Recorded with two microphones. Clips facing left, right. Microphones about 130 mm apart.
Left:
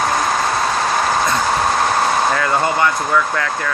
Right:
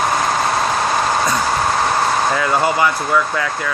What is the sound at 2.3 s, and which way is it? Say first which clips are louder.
Speech: right 1 dB; 5° right (ahead or behind).